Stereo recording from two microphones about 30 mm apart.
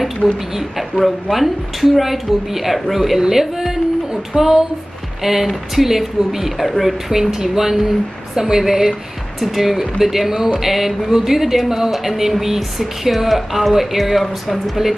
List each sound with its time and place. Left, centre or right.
0.2 s speech: centre
9.4 s speech: centre